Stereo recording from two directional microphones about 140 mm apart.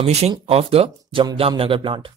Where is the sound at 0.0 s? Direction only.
50° right (ahead or behind).